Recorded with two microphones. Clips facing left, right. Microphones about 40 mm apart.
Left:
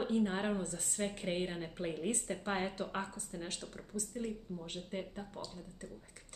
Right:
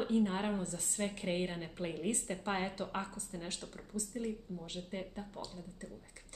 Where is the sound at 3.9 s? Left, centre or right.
Left.